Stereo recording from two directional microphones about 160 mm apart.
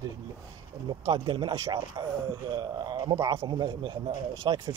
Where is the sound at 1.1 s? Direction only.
30° right (ahead or behind).